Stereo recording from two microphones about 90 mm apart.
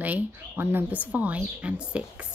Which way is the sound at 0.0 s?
20° right (ahead or behind).